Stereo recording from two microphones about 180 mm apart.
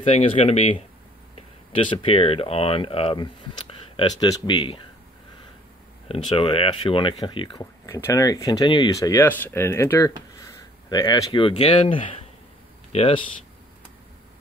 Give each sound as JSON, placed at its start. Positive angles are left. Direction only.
{"t": 0.0, "sound": "speech", "side_deg": 35}
{"t": 6.0, "sound": "speech", "side_deg": 30}